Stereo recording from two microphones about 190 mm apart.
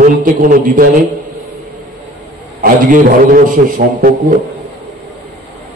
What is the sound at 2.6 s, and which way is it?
A man's voice, 45° right (ahead or behind).